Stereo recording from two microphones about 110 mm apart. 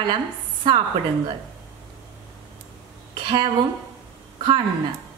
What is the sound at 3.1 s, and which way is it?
Speech, 45° right (ahead or behind).